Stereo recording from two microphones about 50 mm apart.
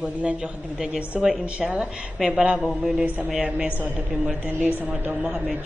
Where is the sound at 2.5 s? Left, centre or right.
Centre.